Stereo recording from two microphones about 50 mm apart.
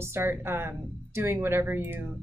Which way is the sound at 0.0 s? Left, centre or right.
Right.